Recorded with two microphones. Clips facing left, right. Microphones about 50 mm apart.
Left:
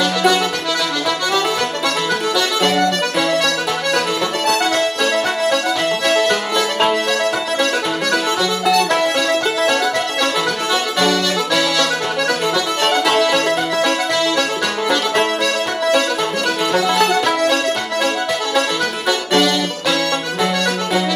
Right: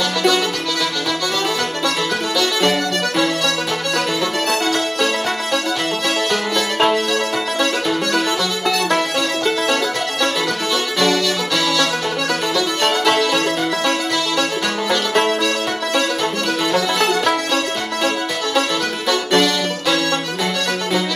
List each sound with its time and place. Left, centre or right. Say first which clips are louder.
0.0 s music: left 2 dB; centre
6.0 s music: left 4 dB; centre
8.6 s music: left 3 dB; centre
11.0 s accordion: even; centre
12.8 s music: left 2 dB; centre
14.9 s music: even; centre